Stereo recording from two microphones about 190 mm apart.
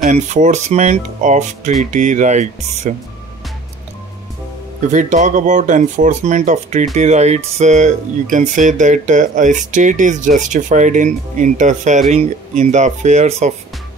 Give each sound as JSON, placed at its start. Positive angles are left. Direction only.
{"t": 0.0, "sound": "speech", "side_deg": -40}
{"t": 4.9, "sound": "speech", "side_deg": -40}